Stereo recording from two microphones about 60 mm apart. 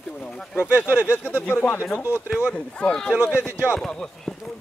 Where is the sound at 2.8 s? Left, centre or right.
Centre.